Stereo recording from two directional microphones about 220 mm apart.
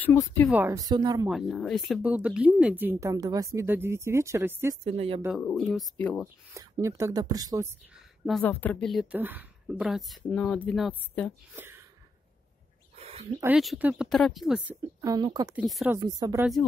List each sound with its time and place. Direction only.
0.0 s speech: 10° left (ahead or behind)
0.5 s speech: 10° right (ahead or behind)
1.3 s speech: centre (ahead or behind)
4.8 s speech: 25° right (ahead or behind)
5.4 s a woman's voice: centre (ahead or behind)
6.5 s speech: 15° right (ahead or behind)
8.3 s a woman's voice: 5° left (ahead or behind)
11.5 s speech: 10° right (ahead or behind)
12.9 s a sound: 30° right (ahead or behind)
13.4 s a woman's voice: 5° right (ahead or behind)
15.0 s speech: 15° right (ahead or behind)
15.5 s a woman's voice: centre (ahead or behind)
15.9 s speech: 15° right (ahead or behind)